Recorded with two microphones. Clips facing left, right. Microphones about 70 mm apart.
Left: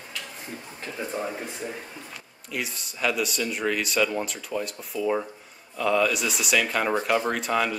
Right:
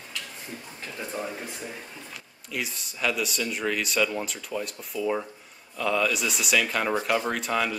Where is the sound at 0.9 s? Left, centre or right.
Centre.